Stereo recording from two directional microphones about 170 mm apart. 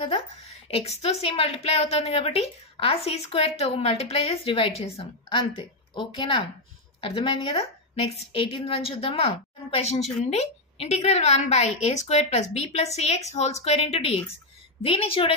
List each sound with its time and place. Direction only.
0.7 s a woman's voice: 35° left (ahead or behind)